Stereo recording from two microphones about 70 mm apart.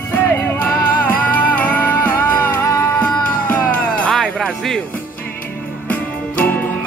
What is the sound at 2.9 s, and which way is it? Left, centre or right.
Cat, centre.